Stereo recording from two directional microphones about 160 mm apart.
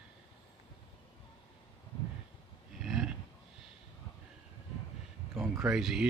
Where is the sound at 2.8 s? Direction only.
Centre (ahead or behind).